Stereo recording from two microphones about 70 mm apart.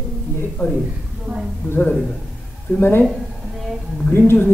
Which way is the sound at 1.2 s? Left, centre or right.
Centre.